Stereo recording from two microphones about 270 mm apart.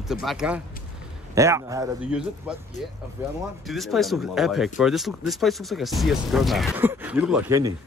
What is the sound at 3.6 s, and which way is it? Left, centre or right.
A man's voice, centre.